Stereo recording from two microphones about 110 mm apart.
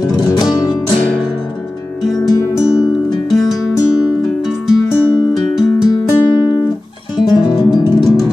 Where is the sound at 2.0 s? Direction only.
Centre (ahead or behind).